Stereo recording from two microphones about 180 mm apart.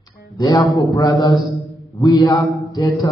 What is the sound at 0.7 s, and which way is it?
A man's voice, 20° left (ahead or behind).